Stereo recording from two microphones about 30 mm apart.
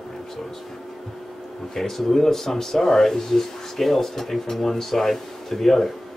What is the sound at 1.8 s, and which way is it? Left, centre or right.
Speech, centre.